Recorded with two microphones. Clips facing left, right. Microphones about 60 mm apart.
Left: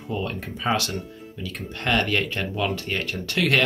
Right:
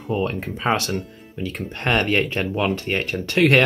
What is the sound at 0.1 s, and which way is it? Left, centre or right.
Speech, right.